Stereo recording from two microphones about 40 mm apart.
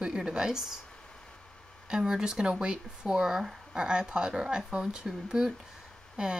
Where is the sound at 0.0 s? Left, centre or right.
Centre.